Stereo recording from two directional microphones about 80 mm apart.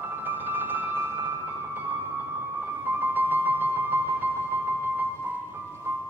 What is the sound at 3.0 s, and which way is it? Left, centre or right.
Music, right.